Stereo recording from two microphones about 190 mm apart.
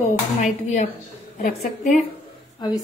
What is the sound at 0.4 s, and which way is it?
Speech, 40° left (ahead or behind).